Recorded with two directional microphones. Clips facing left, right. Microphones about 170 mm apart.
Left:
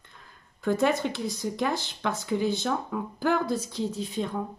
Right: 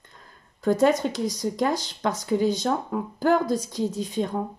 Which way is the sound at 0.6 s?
40° right (ahead or behind).